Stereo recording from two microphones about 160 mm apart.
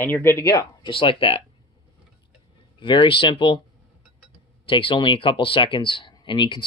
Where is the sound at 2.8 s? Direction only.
30° left (ahead or behind).